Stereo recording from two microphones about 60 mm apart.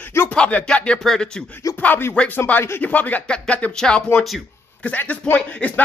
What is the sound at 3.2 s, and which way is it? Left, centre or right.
Speech, centre.